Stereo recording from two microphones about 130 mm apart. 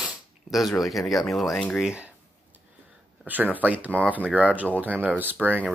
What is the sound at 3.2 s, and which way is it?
Speech, 15° right (ahead or behind).